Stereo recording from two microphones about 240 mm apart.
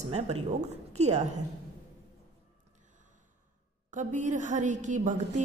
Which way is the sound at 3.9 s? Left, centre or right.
Right.